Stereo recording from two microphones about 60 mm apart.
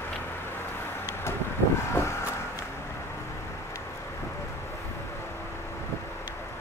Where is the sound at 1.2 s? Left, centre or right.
Left.